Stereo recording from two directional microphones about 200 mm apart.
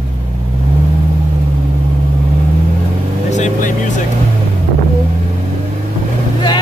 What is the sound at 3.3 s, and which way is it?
Vehicle, 35° left (ahead or behind).